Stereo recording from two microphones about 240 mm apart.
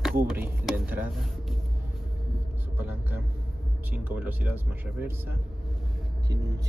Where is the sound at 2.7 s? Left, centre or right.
Centre.